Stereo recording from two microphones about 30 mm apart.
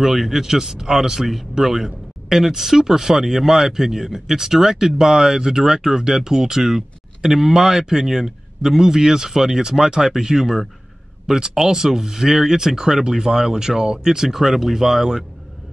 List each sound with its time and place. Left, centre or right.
0.0 s speech: centre
11.3 s speech: centre